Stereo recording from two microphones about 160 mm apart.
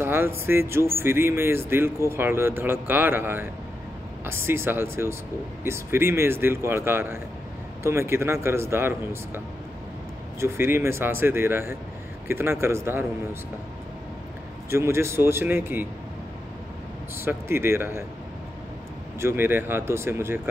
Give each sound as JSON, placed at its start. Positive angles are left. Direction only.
{"t": 0.0, "sound": "a sound", "side_deg": -15}
{"t": 0.5, "sound": "speech", "side_deg": -15}
{"t": 10.4, "sound": "speech", "side_deg": -15}
{"t": 14.7, "sound": "speech", "side_deg": -15}
{"t": 17.2, "sound": "speech", "side_deg": -15}
{"t": 19.1, "sound": "speech", "side_deg": -15}